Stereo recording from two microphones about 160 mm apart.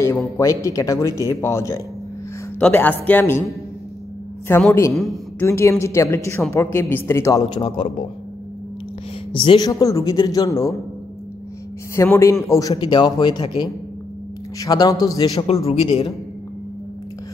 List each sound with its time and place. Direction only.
0.4 s a man's voice: 20° left (ahead or behind)
4.5 s a woman's voice: 15° left (ahead or behind)
4.9 s a woman's voice: centre (ahead or behind)
5.4 s a woman's voice: 15° left (ahead or behind); by 7.9 s 35° left (ahead or behind)
9.3 s a man's voice: 30° left (ahead or behind)
9.7 s a man's voice: 20° left (ahead or behind)
11.9 s a man's voice: 15° left (ahead or behind)
15.6 s a man's voice: 40° left (ahead or behind)